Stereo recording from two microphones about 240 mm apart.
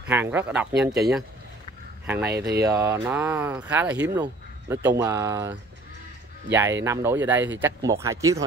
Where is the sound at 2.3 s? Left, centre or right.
Right.